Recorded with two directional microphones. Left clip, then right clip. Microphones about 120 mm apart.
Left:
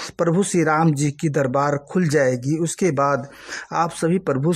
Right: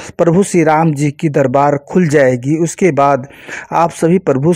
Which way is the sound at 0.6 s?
25° right (ahead or behind).